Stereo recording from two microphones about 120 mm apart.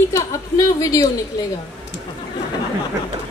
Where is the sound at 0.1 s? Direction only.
30° left (ahead or behind).